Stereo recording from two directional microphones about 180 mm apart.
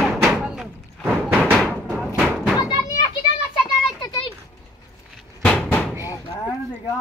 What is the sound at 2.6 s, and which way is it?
Children playing, 20° left (ahead or behind).